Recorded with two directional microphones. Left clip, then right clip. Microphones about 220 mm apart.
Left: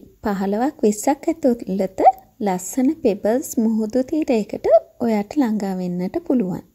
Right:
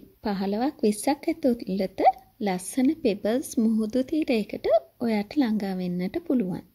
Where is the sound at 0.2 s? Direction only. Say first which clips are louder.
Left 6 dB; 10° left (ahead or behind).